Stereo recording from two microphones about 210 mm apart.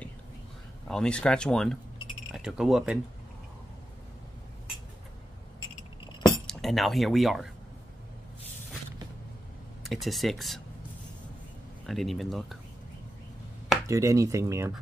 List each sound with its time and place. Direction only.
0.8 s speech: 5° left (ahead or behind)
6.2 s speech: centre (ahead or behind)
9.8 s speech: centre (ahead or behind)
11.8 s speech: centre (ahead or behind)
13.8 s speech: 15° right (ahead or behind)